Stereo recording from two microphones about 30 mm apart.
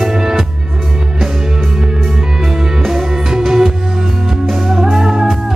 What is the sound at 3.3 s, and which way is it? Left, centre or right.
Music, centre.